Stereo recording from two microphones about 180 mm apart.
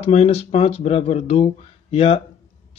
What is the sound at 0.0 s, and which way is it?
A man's voice, 35° left (ahead or behind).